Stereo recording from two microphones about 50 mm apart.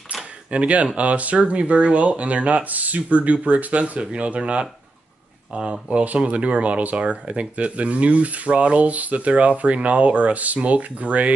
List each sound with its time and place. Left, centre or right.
0.5 s speech: right